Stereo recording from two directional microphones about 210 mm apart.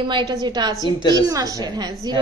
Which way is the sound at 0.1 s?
20° right (ahead or behind).